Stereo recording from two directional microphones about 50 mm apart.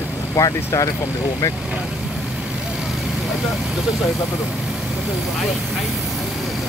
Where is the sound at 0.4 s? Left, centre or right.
Left.